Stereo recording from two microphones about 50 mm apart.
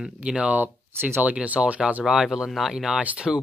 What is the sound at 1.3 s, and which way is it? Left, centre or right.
Speech, right.